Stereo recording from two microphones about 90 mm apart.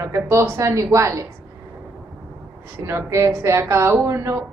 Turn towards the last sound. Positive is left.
turn(degrees=-30)  # may be behind; listen again after turning